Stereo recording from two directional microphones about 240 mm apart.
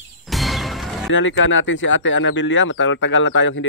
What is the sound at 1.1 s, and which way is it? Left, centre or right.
Speech, left.